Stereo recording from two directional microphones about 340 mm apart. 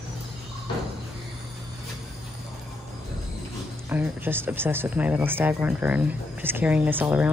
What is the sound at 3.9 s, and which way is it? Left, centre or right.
Speech, centre.